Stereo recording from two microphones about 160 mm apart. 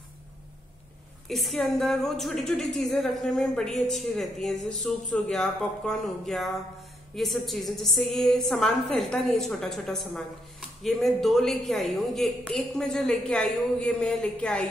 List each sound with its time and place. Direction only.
1.3 s a woman's voice: centre (ahead or behind)